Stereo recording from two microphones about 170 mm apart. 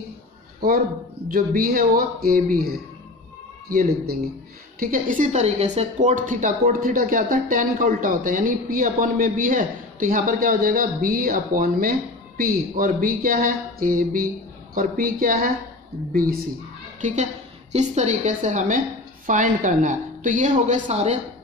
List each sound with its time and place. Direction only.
0.6 s speech: 60° right (ahead or behind)
17.0 s a woman's voice: 45° right (ahead or behind)